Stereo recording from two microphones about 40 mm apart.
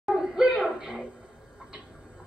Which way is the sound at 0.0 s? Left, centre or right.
Centre.